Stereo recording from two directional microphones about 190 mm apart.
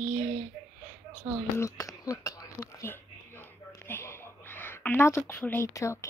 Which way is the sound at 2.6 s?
15° left (ahead or behind).